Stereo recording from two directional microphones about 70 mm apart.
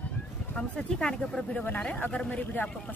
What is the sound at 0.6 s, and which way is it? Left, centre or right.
Speech, centre.